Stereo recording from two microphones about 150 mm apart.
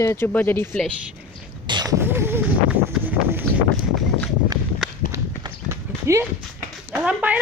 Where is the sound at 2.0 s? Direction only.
15° right (ahead or behind).